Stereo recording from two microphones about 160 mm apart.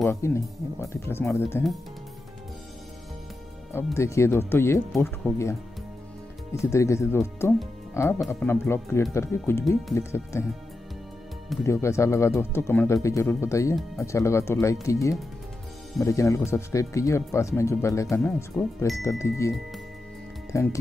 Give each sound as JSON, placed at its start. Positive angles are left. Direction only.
{"t": 0.1, "sound": "speech", "side_deg": 15}
{"t": 3.7, "sound": "speech", "side_deg": 15}
{"t": 6.6, "sound": "speech", "side_deg": 20}
{"t": 11.6, "sound": "speech", "side_deg": 15}
{"t": 18.2, "sound": "speech", "side_deg": 0}
{"t": 19.0, "sound": "speech", "side_deg": 20}
{"t": 20.5, "sound": "speech", "side_deg": 20}